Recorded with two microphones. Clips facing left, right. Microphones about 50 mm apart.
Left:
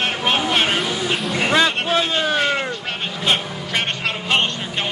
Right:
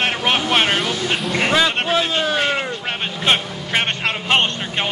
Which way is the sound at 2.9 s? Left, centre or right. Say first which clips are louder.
Right 4 dB; right.